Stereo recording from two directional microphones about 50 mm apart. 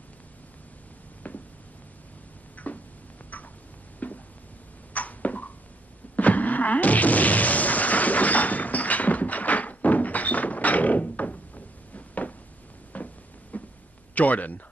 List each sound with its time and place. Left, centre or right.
2.6 s tick-tock: left
4.0 s a sound: left
14.1 s speech: left